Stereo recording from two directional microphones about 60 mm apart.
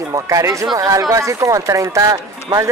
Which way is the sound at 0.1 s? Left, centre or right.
Right.